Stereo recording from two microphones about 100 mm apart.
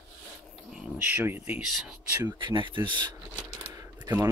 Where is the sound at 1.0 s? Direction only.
20° right (ahead or behind).